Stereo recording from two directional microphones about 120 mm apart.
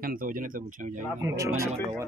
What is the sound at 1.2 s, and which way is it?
Speech, 25° right (ahead or behind).